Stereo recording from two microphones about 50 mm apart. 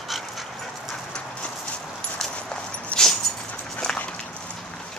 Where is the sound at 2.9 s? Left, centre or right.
Left.